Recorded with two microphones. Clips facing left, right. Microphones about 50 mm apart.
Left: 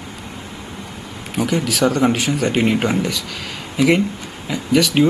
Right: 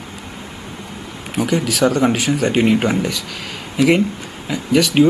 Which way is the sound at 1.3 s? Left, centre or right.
Centre.